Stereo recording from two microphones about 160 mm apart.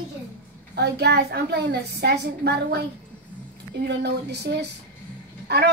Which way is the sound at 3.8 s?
90° right.